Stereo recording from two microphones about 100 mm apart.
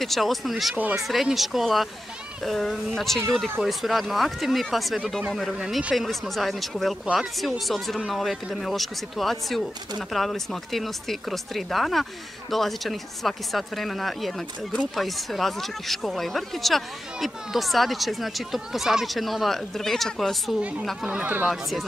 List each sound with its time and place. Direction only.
0.0 s speech: centre (ahead or behind)
21.1 s speech: 15° right (ahead or behind)
21.5 s speech: centre (ahead or behind)